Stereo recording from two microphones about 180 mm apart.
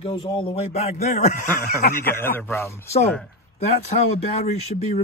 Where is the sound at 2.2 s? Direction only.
10° left (ahead or behind).